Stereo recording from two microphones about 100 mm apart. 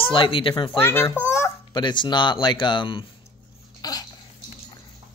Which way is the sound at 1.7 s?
50° left (ahead or behind).